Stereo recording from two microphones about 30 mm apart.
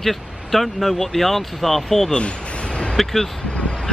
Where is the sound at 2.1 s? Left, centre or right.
Left.